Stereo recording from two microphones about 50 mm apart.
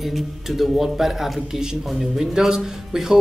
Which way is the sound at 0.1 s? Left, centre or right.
Centre.